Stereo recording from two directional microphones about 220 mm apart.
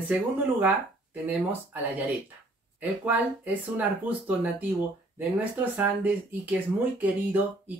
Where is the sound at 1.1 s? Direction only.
5° right (ahead or behind).